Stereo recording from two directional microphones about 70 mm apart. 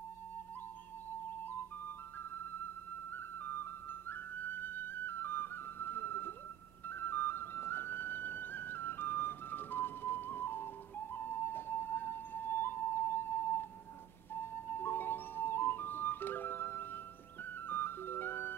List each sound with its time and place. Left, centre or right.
1.4 s music: left
2.3 s flute: left
6.9 s music: left